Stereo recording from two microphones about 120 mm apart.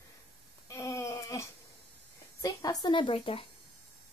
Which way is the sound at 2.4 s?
30° left (ahead or behind).